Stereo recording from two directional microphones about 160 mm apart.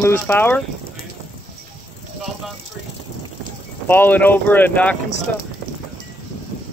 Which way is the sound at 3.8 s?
10° left (ahead or behind).